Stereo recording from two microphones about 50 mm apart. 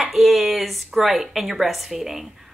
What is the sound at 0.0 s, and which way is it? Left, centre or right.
A woman's voice, centre.